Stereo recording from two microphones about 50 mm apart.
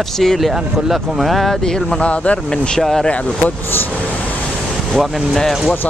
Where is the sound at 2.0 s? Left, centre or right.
Left.